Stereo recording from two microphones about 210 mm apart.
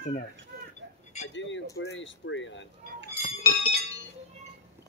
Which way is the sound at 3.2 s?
30° left (ahead or behind).